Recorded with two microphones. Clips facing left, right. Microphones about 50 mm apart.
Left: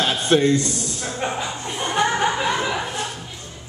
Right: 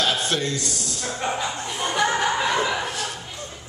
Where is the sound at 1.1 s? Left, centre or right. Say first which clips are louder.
Even; centre.